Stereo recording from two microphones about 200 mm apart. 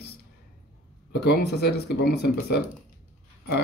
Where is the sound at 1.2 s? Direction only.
55° left (ahead or behind).